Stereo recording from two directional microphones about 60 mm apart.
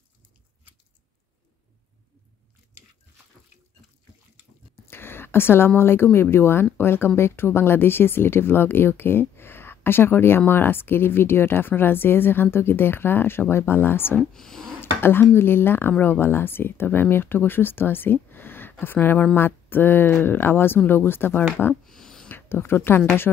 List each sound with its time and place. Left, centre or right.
4.8 s a sound: left
5.8 s speech: left
14.3 s speech: centre
14.8 s speech: left
21.8 s a sound: centre
22.3 s speech: left
23.3 s speech: centre